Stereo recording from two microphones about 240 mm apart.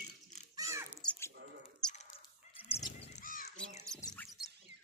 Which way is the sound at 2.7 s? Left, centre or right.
Left.